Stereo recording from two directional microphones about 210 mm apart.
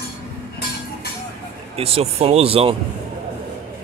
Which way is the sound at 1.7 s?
25° right (ahead or behind).